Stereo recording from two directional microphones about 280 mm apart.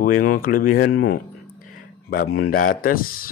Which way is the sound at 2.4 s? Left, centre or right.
Left.